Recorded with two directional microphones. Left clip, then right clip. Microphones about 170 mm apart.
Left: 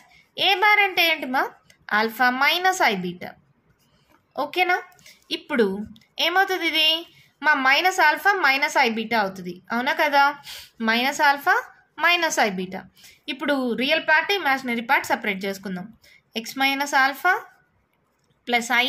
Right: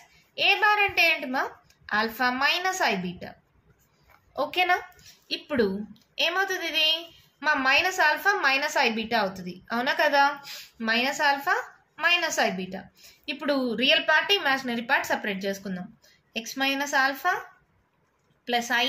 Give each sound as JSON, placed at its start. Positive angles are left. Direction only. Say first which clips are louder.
{"t": 0.3, "sound": "a woman's voice", "louder": "left 3 dB", "side_deg": 45}
{"t": 4.4, "sound": "a woman's voice", "louder": "left 2 dB", "side_deg": 35}
{"t": 18.4, "sound": "a woman's voice", "louder": "left 4 dB", "side_deg": 50}